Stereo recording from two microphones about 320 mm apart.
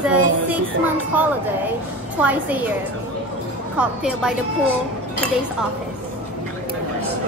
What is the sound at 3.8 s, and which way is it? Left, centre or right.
Music, centre.